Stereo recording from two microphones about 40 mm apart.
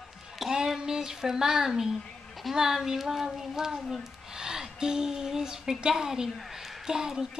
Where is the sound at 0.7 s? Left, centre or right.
Centre.